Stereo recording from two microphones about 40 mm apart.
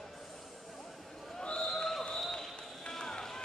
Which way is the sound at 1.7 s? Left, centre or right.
Centre.